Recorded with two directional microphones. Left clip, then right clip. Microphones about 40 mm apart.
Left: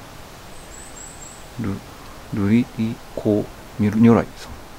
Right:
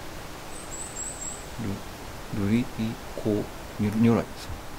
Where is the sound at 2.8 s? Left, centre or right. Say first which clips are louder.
Left 6 dB; left.